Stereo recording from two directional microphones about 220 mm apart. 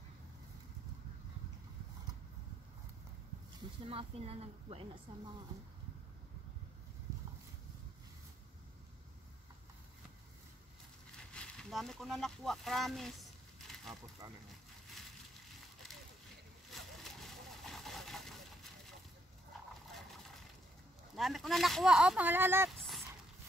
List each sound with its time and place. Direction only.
3.8 s a woman's voice: 25° right (ahead or behind)
11.3 s speech: centre (ahead or behind)
14.2 s speech: 15° right (ahead or behind)
16.7 s a sound: centre (ahead or behind)
21.2 s speech: centre (ahead or behind)
22.8 s a sound: centre (ahead or behind)